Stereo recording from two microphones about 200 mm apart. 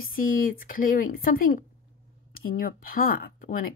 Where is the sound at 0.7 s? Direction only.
45° left (ahead or behind).